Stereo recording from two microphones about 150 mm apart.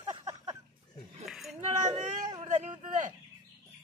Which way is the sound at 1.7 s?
50° right (ahead or behind).